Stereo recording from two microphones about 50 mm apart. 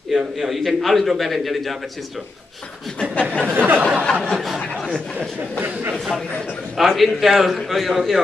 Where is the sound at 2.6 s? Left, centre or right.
Left.